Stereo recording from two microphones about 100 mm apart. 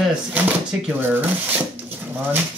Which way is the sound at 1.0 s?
20° right (ahead or behind).